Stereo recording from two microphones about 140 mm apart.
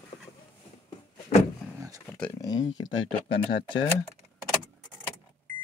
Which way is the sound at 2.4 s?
30° left (ahead or behind).